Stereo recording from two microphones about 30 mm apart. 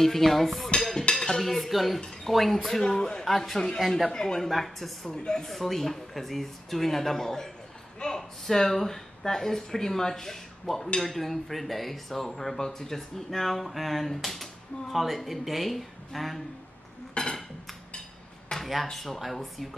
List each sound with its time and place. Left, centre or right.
0.0 s speech: centre
1.1 s cutlery: left
1.4 s speech: centre
2.9 s a man's voice: left
3.3 s speech: centre
5.0 s speech: centre
5.5 s speech: centre
17.2 s dishes: left
18.6 s speech: centre